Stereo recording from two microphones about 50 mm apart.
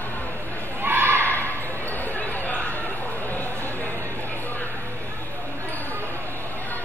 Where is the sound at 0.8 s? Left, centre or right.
Right.